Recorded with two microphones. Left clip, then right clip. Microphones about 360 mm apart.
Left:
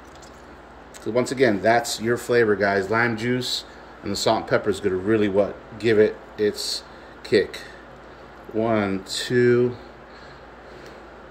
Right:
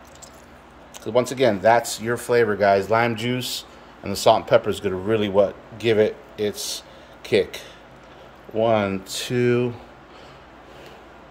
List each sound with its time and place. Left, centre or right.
1.4 s speech: centre
8.6 s speech: centre